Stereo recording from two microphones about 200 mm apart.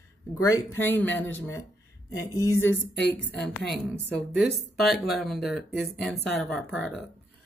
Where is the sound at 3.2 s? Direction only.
60° left (ahead or behind).